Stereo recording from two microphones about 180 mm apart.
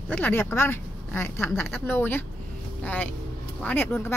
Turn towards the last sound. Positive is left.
turn(degrees=10)  # may be behind; listen again after turning